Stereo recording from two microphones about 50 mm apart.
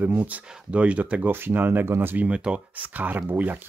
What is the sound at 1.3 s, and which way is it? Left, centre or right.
Speech, right.